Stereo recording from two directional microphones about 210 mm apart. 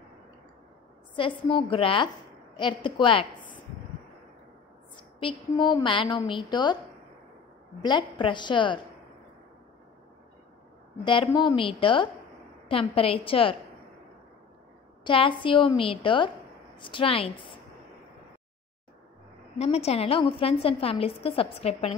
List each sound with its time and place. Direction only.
1.1 s a woman's voice: 25° left (ahead or behind)
5.2 s a woman's voice: 25° left (ahead or behind)
7.8 s a woman's voice: 20° left (ahead or behind)
11.1 s a woman's voice: 20° left (ahead or behind)
15.0 s a woman's voice: 25° left (ahead or behind)
19.6 s a woman's voice: 30° left (ahead or behind)